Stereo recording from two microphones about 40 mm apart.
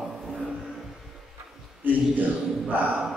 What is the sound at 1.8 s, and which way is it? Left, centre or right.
A man's voice, right.